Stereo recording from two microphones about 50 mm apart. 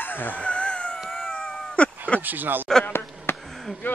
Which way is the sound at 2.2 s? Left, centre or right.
Right.